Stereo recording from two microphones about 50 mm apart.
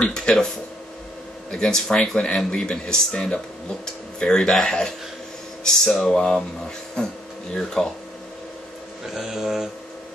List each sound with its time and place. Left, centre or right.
0.1 s speech: centre
1.5 s speech: centre
9.0 s speech: centre